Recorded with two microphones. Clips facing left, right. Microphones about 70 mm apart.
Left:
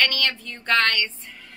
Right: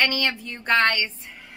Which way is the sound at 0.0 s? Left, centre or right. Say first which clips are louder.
Even; centre.